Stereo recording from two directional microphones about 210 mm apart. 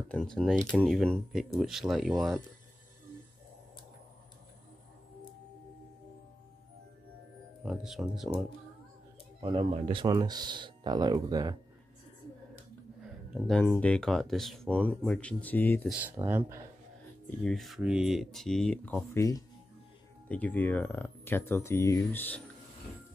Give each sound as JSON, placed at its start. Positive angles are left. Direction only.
{"t": 0.1, "sound": "speech", "side_deg": 5}
{"t": 7.6, "sound": "speech", "side_deg": 0}
{"t": 9.4, "sound": "speech", "side_deg": -25}
{"t": 12.5, "sound": "speech", "side_deg": 0}
{"t": 15.9, "sound": "speech", "side_deg": -10}
{"t": 17.4, "sound": "speech", "side_deg": 0}